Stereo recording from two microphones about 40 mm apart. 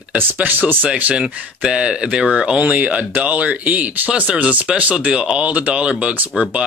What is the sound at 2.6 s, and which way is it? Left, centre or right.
Speech, right.